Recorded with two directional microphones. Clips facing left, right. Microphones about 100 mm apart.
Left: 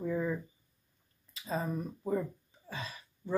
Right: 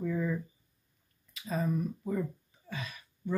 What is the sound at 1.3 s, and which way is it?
Speech, 30° left (ahead or behind).